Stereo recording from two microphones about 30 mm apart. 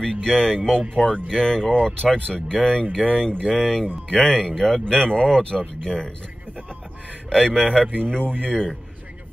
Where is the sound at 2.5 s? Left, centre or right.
Left.